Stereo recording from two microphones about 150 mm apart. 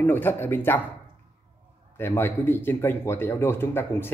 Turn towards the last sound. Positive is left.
turn(degrees=15)  # may be behind; listen again after turning